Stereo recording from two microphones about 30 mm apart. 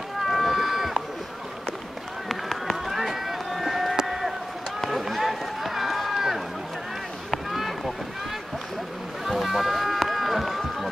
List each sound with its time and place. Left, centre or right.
0.2 s run: centre
2.2 s run: centre
2.9 s run: centre
3.9 s a sound: centre
5.0 s run: centre
7.5 s run: centre
9.2 s run: centre